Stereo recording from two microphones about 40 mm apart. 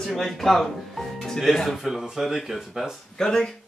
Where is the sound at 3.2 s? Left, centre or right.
Centre.